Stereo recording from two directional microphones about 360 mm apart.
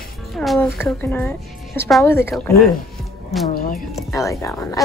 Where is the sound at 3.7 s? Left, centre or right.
Centre.